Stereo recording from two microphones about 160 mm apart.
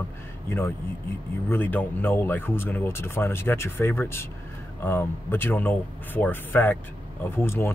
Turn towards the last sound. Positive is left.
turn(degrees=15)  # may be behind; listen again after turning